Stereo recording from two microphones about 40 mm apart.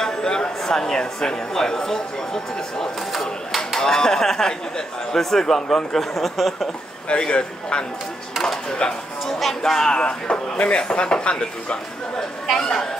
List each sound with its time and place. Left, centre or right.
0.0 s speech: centre
3.1 s a sound: centre
3.8 s speech: centre
7.1 s a man's voice: left
9.6 s speech: centre
10.0 s a man's voice: left
12.5 s speech: centre